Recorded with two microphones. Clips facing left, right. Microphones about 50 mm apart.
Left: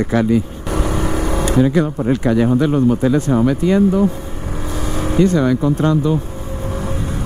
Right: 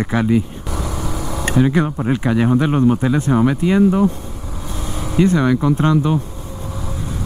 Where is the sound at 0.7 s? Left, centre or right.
Left.